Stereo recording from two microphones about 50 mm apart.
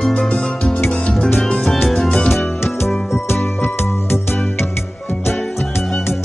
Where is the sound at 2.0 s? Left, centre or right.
Centre.